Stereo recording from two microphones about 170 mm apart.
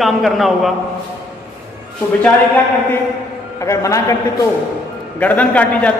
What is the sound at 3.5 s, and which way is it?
Speech, 20° left (ahead or behind).